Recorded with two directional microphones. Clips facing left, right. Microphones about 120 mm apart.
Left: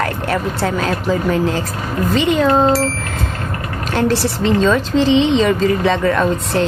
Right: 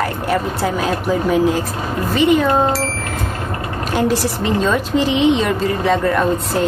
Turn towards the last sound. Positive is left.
turn(degrees=-5)  # may be behind; listen again after turning